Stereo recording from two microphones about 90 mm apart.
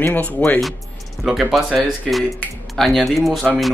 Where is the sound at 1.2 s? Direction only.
Centre (ahead or behind).